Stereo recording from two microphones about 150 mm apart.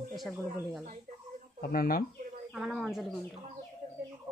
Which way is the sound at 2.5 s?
Centre (ahead or behind).